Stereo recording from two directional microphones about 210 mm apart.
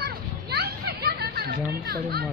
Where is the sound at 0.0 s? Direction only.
50° right (ahead or behind).